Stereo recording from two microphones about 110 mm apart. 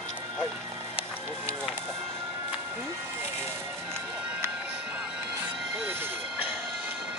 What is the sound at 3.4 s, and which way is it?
Music, 20° right (ahead or behind).